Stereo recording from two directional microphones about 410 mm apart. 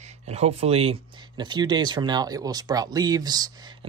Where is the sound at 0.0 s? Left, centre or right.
Centre.